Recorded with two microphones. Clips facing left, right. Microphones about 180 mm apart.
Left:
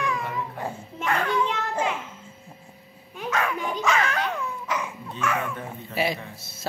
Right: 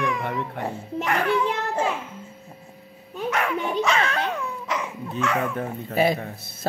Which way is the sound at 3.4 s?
20° right (ahead or behind).